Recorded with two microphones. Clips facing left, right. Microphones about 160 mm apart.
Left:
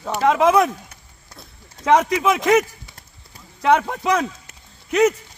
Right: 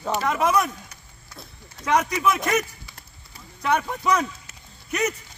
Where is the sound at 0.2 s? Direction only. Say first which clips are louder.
Left 8 dB; 90° left.